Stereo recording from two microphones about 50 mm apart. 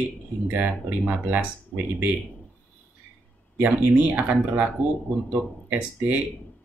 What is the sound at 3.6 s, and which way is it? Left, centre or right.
Speech, right.